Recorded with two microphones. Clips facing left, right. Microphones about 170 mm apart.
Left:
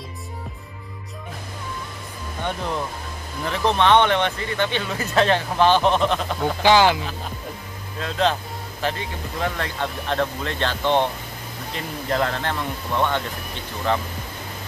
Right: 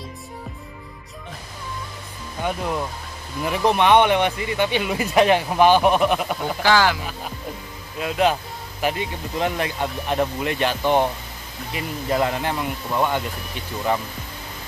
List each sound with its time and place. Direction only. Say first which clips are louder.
3.4 s speech: right 1 dB; 15° right (ahead or behind)
6.6 s speech: left 3 dB; 20° left (ahead or behind)
8.0 s speech: right 2 dB; 10° right (ahead or behind)